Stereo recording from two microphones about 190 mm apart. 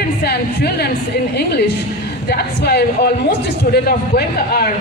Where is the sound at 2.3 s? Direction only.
55° left (ahead or behind).